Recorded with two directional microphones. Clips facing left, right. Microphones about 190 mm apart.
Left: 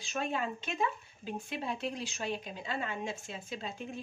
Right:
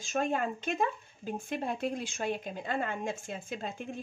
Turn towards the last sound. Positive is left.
turn(degrees=-50)  # may be behind; listen again after turning